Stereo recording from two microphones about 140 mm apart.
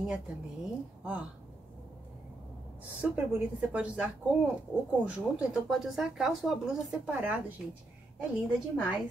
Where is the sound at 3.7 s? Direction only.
10° right (ahead or behind).